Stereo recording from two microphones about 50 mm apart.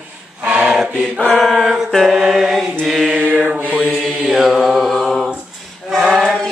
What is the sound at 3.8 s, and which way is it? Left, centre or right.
Mantra, centre.